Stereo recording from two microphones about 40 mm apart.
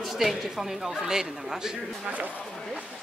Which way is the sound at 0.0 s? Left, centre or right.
Centre.